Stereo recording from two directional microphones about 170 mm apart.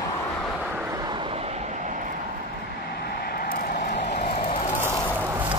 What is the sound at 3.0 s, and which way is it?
Vehicle, 65° left (ahead or behind).